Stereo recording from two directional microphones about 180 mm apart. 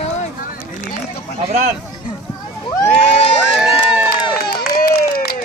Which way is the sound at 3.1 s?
35° left (ahead or behind).